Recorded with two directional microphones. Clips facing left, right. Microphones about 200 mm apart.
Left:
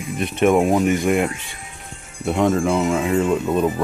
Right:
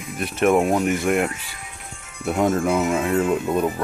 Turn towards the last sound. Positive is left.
turn(degrees=-5)  # may be behind; listen again after turning